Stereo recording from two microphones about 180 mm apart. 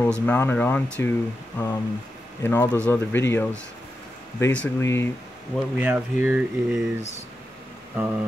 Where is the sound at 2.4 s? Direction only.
10° left (ahead or behind).